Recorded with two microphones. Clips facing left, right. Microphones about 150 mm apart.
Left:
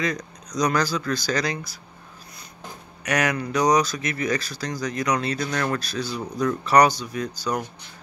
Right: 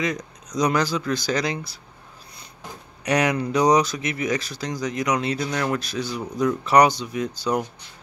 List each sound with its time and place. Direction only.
0.0 s speech: 20° right (ahead or behind)
3.1 s speech: 25° right (ahead or behind)